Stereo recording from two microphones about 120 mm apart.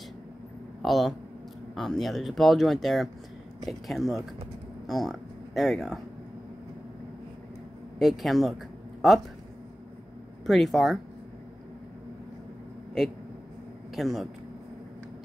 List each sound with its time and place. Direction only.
0.8 s speech: centre (ahead or behind)
8.0 s speech: centre (ahead or behind)
10.4 s speech: centre (ahead or behind)
13.9 s speech: centre (ahead or behind)